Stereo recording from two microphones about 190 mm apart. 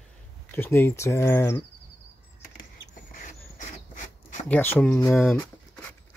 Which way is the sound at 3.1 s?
45° left (ahead or behind).